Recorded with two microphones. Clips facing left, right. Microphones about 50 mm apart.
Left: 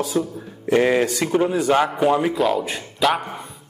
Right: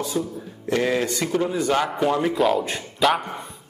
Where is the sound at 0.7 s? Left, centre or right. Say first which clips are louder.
Left 5 dB; centre.